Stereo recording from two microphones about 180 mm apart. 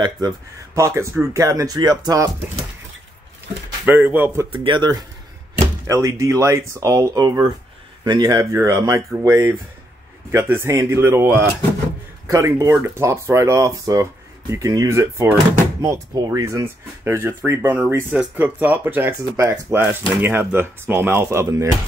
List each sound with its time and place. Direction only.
0.7 s speech: 15° right (ahead or behind)
3.8 s speech: 10° right (ahead or behind)
4.5 s speech: 25° right (ahead or behind)